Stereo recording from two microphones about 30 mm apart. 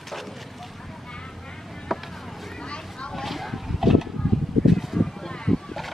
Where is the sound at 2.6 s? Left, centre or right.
Left.